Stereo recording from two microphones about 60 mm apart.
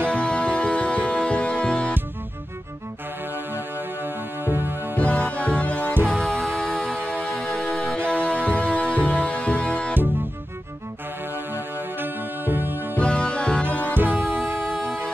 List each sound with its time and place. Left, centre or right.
0.0 s music: centre
3.3 s music: right
4.9 s music: left
6.1 s music: centre
8.1 s music: left
11.3 s music: right
12.9 s music: centre
13.9 s music: right
14.4 s music: centre